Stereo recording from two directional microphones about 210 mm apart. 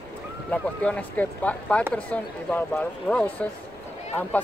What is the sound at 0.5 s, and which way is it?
Speech, 5° left (ahead or behind).